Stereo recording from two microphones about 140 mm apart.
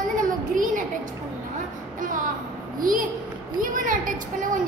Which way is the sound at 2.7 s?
75° right (ahead or behind).